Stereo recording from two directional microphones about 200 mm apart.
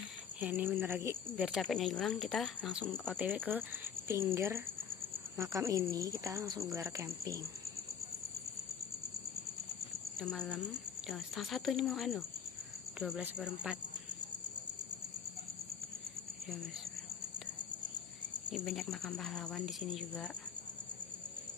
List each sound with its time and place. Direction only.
0.4 s speech: 10° right (ahead or behind)
10.2 s speech: 5° left (ahead or behind)
18.5 s speech: centre (ahead or behind)